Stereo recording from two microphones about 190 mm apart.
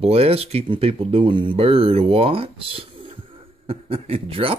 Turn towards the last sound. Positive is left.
turn(degrees=-30)  # may be behind; listen again after turning